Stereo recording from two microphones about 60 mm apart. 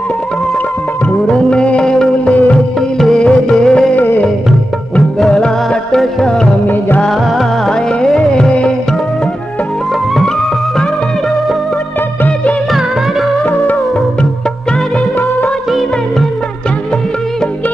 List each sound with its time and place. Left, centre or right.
1.3 s music: centre
3.9 s music: left
5.2 s music: centre